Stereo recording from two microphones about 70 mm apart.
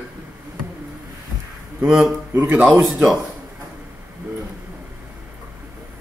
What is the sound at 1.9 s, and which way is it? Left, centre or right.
Speech, centre.